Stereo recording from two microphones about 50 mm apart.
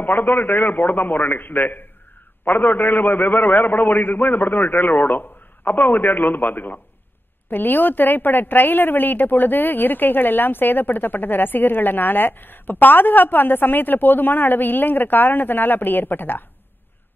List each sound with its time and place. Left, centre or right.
0.0 s a woman's voice: left